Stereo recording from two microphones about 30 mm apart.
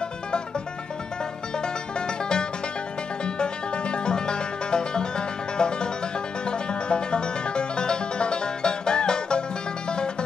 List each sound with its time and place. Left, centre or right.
1.6 s music: left